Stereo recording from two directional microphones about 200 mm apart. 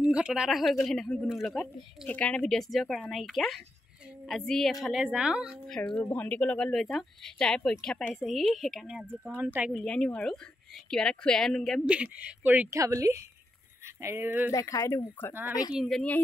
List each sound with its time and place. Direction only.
0.0 s a woman's voice: 5° right (ahead or behind)
9.8 s a woman's voice: 5° left (ahead or behind)
14.5 s speech: 15° left (ahead or behind)
15.7 s a woman's voice: centre (ahead or behind)